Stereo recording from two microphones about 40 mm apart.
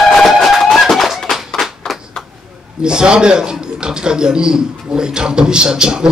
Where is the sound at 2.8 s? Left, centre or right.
Right.